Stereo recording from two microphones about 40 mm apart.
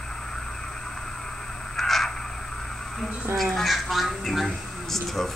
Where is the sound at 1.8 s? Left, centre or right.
Centre.